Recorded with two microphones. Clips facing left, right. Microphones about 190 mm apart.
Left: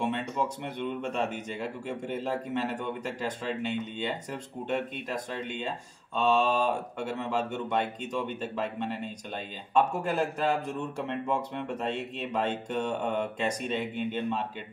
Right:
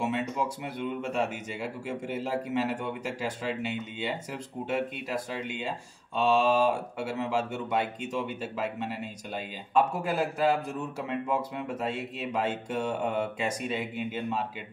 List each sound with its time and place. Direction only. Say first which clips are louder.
0.0 s speech: even; 5° right (ahead or behind)